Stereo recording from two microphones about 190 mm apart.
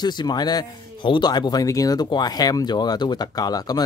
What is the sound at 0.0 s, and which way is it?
Speech, 20° left (ahead or behind).